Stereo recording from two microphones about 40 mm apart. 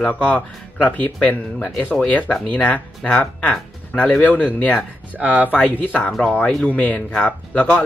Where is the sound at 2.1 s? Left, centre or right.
Left.